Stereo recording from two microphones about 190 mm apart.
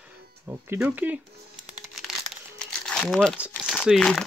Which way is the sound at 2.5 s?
5° left (ahead or behind).